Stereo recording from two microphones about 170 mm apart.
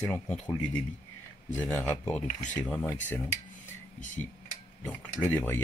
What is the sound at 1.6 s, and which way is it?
Speech, 10° left (ahead or behind).